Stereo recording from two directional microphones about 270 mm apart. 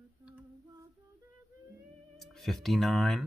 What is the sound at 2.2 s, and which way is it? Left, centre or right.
Speech, centre.